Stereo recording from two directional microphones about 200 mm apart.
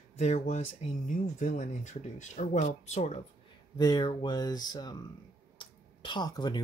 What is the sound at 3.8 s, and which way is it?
Speech, 20° left (ahead or behind).